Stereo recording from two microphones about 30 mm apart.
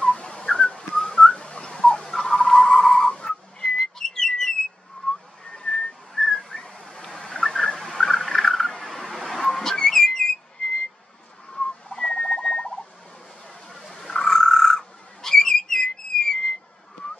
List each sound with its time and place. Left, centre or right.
0.0 s whistling: left
1.3 s whistling: left
1.7 s turkey: centre
2.7 s whistle: centre
3.2 s whistling: left
4.0 s whistle: centre
5.0 s a sound: left
5.8 s whistling: centre
7.2 s a sound: centre
9.3 s vehicle: centre
11.5 s whistling: left
13.7 s a sound: centre